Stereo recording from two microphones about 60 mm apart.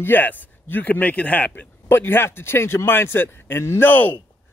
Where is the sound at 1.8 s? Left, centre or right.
Left.